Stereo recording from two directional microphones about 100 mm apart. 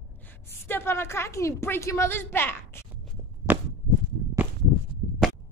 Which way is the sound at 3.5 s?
20° right (ahead or behind).